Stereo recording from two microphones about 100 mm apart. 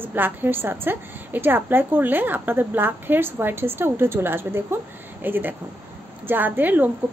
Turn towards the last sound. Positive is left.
turn(degrees=-20)  # may be behind; listen again after turning